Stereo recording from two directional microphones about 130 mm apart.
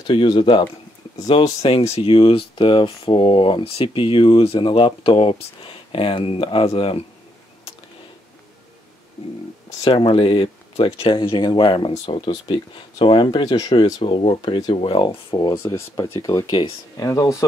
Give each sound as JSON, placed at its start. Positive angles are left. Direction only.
{"t": 0.0, "sound": "speech", "side_deg": 40}
{"t": 1.6, "sound": "speech", "side_deg": 50}
{"t": 9.8, "sound": "speech", "side_deg": 45}
{"t": 14.0, "sound": "speech", "side_deg": 45}
{"t": 15.5, "sound": "speech", "side_deg": 20}